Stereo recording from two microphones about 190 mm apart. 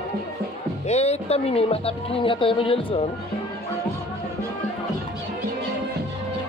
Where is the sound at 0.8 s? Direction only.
35° left (ahead or behind).